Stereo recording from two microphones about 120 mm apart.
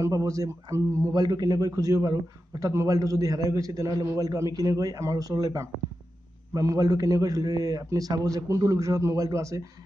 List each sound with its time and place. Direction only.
0.0 s a man's voice: 25° right (ahead or behind)